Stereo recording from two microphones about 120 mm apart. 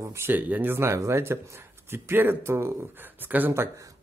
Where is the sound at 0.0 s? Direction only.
20° right (ahead or behind).